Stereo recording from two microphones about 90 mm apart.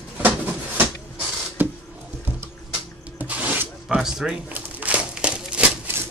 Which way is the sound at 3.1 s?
15° right (ahead or behind).